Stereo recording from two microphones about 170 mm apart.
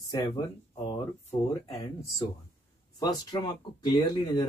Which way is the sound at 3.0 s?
25° left (ahead or behind).